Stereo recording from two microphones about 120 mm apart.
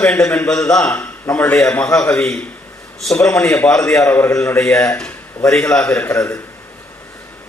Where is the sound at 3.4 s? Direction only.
20° left (ahead or behind).